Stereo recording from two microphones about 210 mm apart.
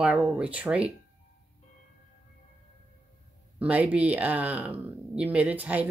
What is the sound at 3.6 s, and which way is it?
Speech, 5° right (ahead or behind).